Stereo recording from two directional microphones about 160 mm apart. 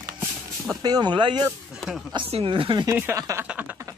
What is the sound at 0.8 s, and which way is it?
Speech, 25° right (ahead or behind).